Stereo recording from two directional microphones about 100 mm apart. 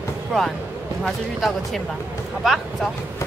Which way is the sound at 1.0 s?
Centre (ahead or behind).